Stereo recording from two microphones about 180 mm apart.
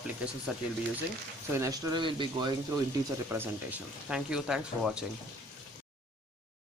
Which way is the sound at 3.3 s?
10° right (ahead or behind).